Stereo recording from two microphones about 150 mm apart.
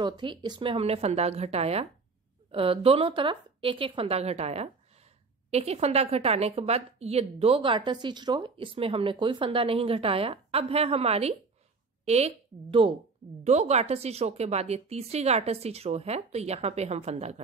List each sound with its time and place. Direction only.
0.0 s a woman's voice: 30° right (ahead or behind)